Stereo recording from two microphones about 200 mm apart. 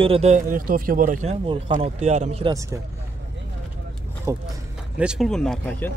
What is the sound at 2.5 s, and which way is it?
Speech, 15° right (ahead or behind).